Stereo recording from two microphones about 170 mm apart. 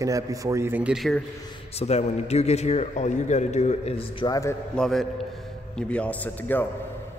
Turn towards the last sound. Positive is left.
turn(degrees=10)  # may be behind; listen again after turning